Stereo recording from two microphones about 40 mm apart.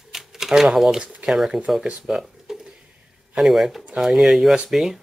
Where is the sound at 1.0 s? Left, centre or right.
Right.